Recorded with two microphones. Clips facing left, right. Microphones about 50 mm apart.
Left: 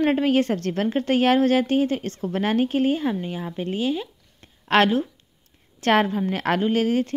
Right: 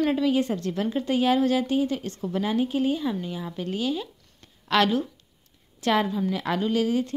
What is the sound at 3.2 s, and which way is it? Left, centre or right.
A woman's voice, left.